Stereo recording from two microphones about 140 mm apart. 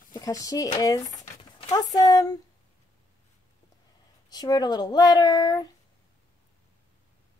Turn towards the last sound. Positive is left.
turn(degrees=30)  # may be behind; listen again after turning